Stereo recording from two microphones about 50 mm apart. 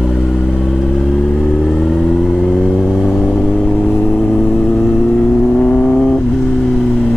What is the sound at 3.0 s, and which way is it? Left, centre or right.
Vehicle, centre.